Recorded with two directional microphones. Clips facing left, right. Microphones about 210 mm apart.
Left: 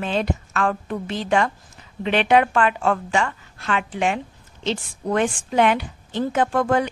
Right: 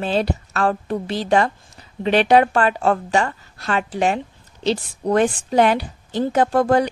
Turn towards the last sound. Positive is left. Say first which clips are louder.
# right 3 dB
turn(degrees=-35)  # may be behind; listen again after turning